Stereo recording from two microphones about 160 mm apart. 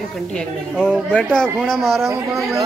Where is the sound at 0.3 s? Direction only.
5° left (ahead or behind).